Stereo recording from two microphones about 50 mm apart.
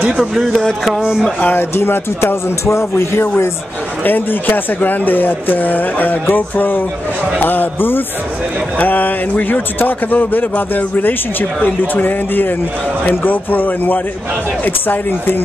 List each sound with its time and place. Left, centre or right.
1.4 s speech: left
2.6 s speech: left
4.0 s speech: left